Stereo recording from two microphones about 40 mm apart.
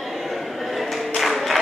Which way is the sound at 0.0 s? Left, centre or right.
Centre.